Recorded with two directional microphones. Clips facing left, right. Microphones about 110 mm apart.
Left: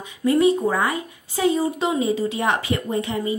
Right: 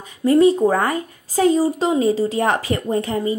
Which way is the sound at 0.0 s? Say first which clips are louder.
Right 4 dB; 40° right (ahead or behind).